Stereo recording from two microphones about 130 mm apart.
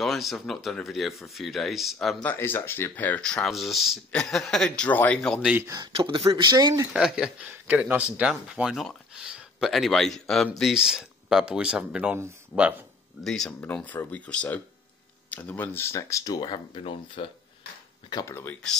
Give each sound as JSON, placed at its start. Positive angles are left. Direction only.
{"t": 0.0, "sound": "speech", "side_deg": 0}
{"t": 2.3, "sound": "speech", "side_deg": 15}
{"t": 5.9, "sound": "speech", "side_deg": -45}
{"t": 6.5, "sound": "speech", "side_deg": -30}
{"t": 6.9, "sound": "speech", "side_deg": -5}
{"t": 13.2, "sound": "speech", "side_deg": 5}
{"t": 18.1, "sound": "speech", "side_deg": 20}